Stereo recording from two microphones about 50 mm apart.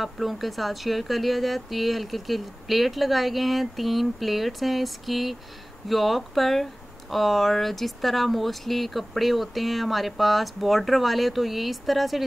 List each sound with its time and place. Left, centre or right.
0.0 s speech: centre